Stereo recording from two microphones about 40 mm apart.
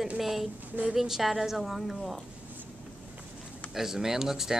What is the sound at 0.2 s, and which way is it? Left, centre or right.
Speech, centre.